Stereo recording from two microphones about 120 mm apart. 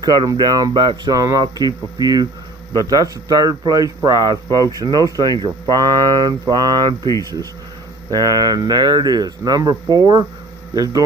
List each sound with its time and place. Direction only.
0.3 s speech: 30° right (ahead or behind)
8.1 s speech: 30° right (ahead or behind)